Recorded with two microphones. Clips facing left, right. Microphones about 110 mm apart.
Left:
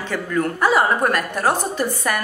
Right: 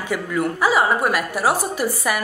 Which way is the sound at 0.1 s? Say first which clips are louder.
Even; 10° right (ahead or behind).